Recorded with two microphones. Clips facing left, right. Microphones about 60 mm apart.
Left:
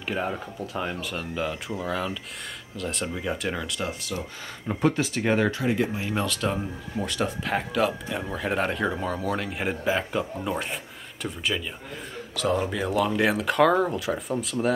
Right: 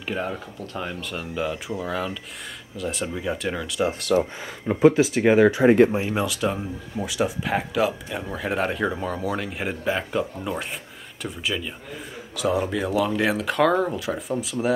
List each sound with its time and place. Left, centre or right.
0.0 s speech: centre
4.0 s speech: right
4.6 s speech: centre